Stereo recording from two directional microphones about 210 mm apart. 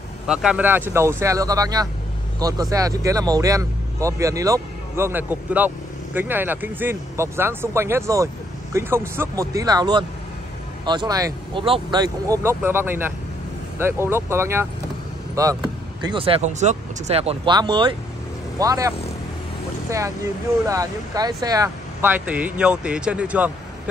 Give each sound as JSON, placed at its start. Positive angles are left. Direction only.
{"t": 0.3, "sound": "speech", "side_deg": -5}
{"t": 20.6, "sound": "speech", "side_deg": -15}